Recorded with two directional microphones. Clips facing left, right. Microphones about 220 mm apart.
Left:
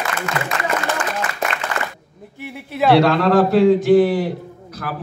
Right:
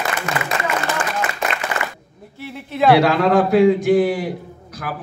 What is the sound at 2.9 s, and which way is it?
A man's voice, centre (ahead or behind).